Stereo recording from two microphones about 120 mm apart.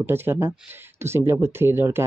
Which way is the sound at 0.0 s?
20° right (ahead or behind).